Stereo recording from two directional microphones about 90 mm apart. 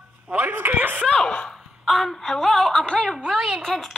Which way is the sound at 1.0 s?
5° left (ahead or behind).